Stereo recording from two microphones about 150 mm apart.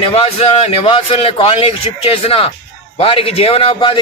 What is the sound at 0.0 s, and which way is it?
A man's voice, 40° left (ahead or behind).